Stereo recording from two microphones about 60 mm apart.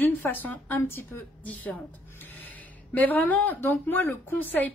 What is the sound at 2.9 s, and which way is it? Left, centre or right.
A woman's voice, left.